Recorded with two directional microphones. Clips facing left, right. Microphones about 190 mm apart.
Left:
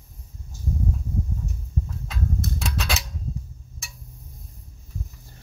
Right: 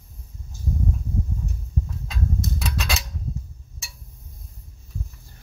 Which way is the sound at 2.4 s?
60° left (ahead or behind).